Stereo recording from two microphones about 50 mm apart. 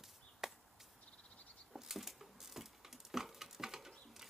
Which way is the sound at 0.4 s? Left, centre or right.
Centre.